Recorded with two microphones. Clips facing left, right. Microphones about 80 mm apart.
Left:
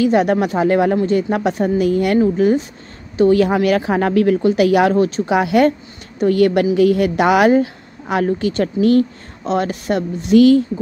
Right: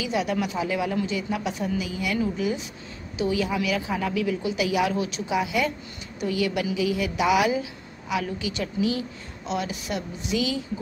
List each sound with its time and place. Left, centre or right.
0.0 s a woman's voice: left